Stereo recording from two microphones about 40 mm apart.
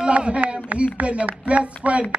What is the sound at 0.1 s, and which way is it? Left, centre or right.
A man's voice, right.